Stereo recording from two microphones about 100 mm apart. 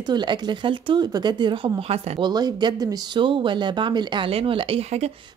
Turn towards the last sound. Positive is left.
turn(degrees=-90)